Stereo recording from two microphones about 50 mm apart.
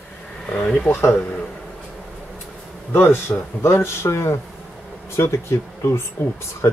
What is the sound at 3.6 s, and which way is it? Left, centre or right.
Speech, left.